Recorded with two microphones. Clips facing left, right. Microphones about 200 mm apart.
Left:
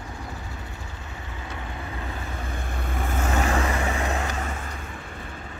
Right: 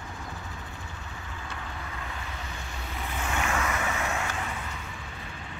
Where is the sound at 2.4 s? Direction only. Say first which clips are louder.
Left 7 dB; 55° left (ahead or behind); by 4.5 s 35° left (ahead or behind).